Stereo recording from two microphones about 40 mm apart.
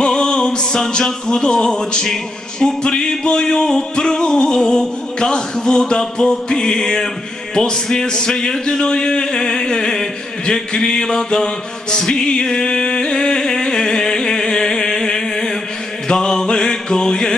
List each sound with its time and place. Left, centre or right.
0.0 s music: centre
7.5 s a man's voice: centre
16.1 s music: centre